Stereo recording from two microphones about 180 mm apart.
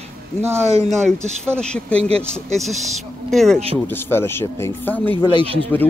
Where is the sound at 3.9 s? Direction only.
10° left (ahead or behind).